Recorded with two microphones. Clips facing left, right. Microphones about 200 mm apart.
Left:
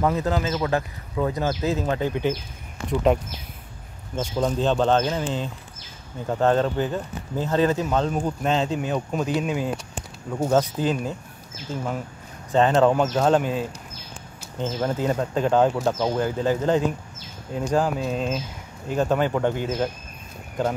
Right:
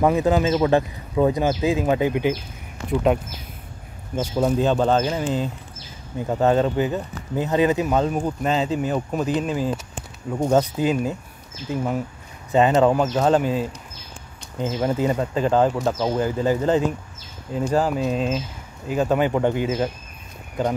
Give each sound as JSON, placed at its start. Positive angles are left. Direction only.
{"t": 0.0, "sound": "speech", "side_deg": -15}
{"t": 0.4, "sound": "speech", "side_deg": -25}
{"t": 4.4, "sound": "speech", "side_deg": -10}
{"t": 10.3, "sound": "speech", "side_deg": -10}